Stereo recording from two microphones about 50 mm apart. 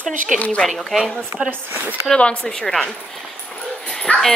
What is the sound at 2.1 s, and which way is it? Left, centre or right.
Speech, left.